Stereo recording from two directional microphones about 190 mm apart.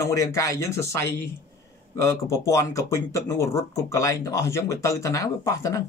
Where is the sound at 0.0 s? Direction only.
15° left (ahead or behind).